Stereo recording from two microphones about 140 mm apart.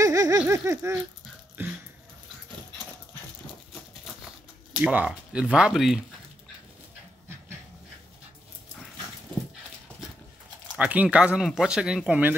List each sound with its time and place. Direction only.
0.0 s a sound: 25° right (ahead or behind)
1.6 s speech: 15° right (ahead or behind)
4.8 s speech: 10° right (ahead or behind)
10.8 s speech: 10° right (ahead or behind)